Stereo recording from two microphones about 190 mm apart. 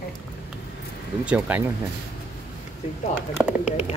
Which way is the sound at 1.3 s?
10° right (ahead or behind).